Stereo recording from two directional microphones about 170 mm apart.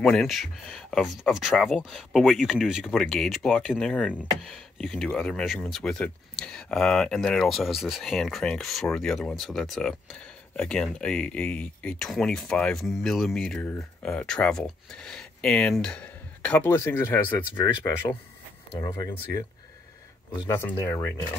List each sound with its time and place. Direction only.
0.0 s speech: centre (ahead or behind)
18.8 s speech: 15° left (ahead or behind)
20.4 s speech: 15° left (ahead or behind)